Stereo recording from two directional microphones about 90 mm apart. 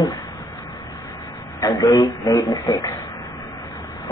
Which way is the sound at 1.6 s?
40° left (ahead or behind).